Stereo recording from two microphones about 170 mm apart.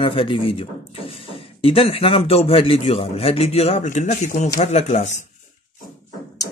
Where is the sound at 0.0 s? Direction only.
30° left (ahead or behind).